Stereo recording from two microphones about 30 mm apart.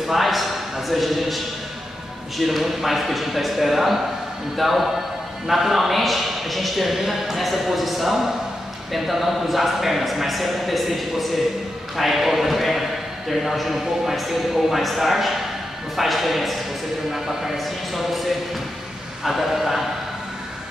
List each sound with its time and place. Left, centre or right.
0.1 s a sound: centre
2.3 s a man's voice: centre
17.1 s a man's voice: centre
17.6 s a man's voice: centre